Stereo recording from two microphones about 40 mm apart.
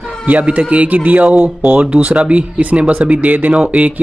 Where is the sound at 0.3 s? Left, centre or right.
Right.